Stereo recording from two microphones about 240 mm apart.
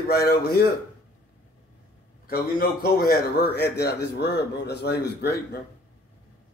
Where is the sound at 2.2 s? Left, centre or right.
Left.